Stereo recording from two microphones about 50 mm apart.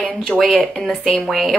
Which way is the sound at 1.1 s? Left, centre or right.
Centre.